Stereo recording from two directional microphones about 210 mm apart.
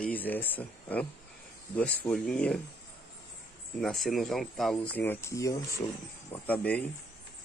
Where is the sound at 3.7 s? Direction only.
Centre (ahead or behind).